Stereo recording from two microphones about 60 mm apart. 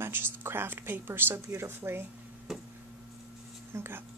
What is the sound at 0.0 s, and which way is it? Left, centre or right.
Speech, right.